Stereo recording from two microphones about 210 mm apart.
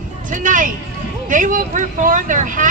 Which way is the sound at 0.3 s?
40° right (ahead or behind).